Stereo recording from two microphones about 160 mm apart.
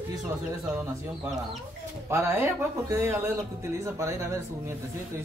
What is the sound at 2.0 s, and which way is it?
Speech, 15° right (ahead or behind).